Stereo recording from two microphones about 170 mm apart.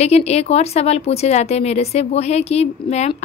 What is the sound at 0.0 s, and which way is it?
A woman's voice, 35° left (ahead or behind).